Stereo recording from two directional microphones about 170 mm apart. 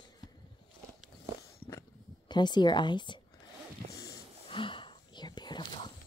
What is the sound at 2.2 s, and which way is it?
Speech, 25° left (ahead or behind).